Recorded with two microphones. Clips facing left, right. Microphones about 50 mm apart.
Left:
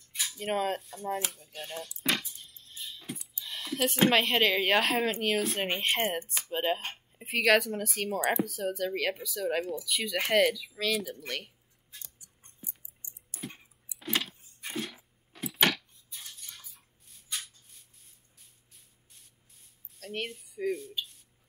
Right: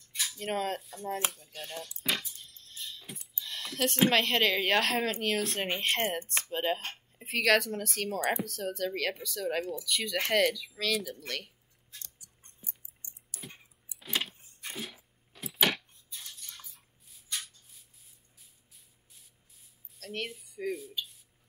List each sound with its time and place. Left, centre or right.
0.1 s speech: centre
1.3 s music: centre
3.3 s speech: centre
13.0 s a sound: right
13.9 s a sound: centre
14.6 s sneeze: centre
15.3 s a sound: centre
16.2 s dishes: centre
17.6 s spray: centre